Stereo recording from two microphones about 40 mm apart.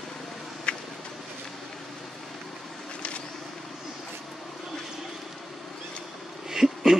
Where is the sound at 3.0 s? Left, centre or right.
Left.